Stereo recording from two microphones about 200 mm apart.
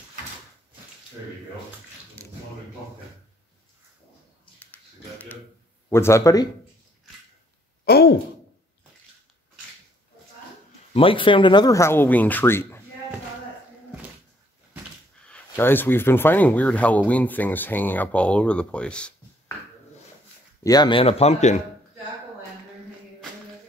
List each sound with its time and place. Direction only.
5.9 s speech: 15° left (ahead or behind)
7.8 s a sound: 50° left (ahead or behind)
10.9 s speech: 25° left (ahead or behind); by 12.8 s 10° left (ahead or behind)
15.2 s speech: 10° left (ahead or behind)
20.6 s speech: 20° left (ahead or behind)